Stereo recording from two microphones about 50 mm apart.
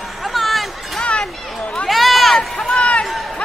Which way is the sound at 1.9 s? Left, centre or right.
Centre.